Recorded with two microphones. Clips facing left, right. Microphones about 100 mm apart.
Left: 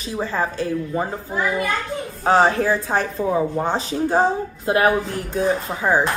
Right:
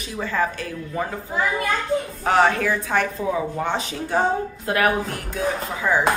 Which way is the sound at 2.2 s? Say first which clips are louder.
Left 3 dB; 35° left (ahead or behind).